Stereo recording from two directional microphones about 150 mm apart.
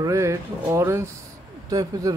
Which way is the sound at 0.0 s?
20° right (ahead or behind).